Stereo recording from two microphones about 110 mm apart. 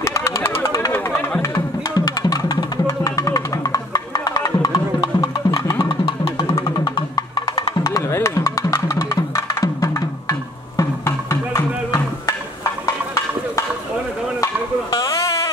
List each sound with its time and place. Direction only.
0.0 s music: 25° left (ahead or behind)
2.0 s music: 40° left (ahead or behind)
5.0 s music: 50° left (ahead or behind)
6.8 s music: 40° left (ahead or behind)
7.8 s music: 30° left (ahead or behind)
10.8 s a sound: 25° left (ahead or behind)
14.4 s a sound: 35° left (ahead or behind)